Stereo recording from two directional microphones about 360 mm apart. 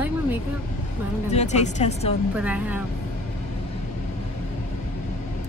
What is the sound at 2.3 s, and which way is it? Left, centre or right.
Speech, centre.